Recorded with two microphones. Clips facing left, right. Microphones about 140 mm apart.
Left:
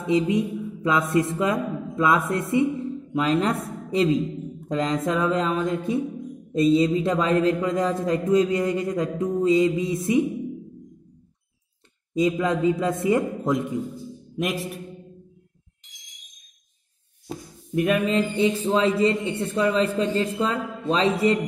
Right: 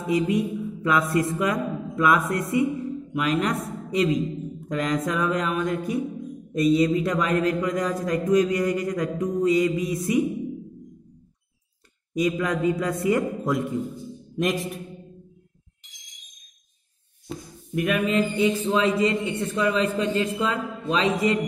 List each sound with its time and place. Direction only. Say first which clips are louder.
0.0 s music: left 1 dB; 20° left (ahead or behind)
3.6 s a woman's voice: left 1 dB; 30° left (ahead or behind)
4.6 s mantra: left 2 dB; 25° left (ahead or behind)
12.2 s mantra: left 2 dB; 25° left (ahead or behind)
14.3 s a man's voice: right 2 dB; 5° left (ahead or behind)
17.7 s a man's voice: left 1 dB; 30° left (ahead or behind)